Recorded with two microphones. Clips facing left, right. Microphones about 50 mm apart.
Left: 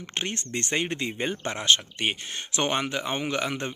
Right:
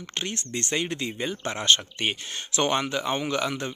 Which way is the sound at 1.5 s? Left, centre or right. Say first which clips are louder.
Right 1 dB; centre.